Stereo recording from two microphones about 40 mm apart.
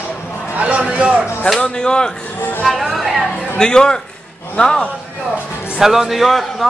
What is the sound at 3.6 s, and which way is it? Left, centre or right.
A man's voice, centre.